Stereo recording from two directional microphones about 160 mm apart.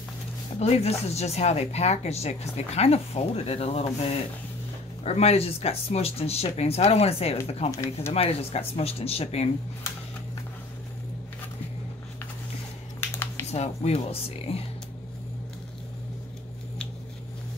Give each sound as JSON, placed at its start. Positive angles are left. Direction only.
{"t": 0.6, "sound": "speech", "side_deg": 40}
{"t": 5.0, "sound": "speech", "side_deg": 40}
{"t": 13.1, "sound": "a sound", "side_deg": 15}
{"t": 13.5, "sound": "speech", "side_deg": 40}